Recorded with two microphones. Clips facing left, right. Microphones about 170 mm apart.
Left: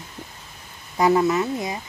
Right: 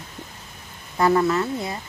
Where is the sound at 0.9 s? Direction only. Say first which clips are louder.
Left 1 dB; 15° left (ahead or behind).